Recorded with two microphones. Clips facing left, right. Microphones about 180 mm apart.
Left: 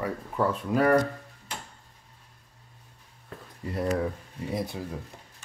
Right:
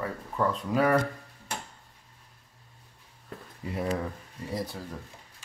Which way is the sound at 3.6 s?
5° right (ahead or behind).